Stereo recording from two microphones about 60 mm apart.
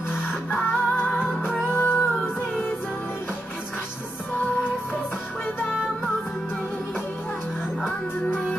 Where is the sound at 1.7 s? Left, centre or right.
Left.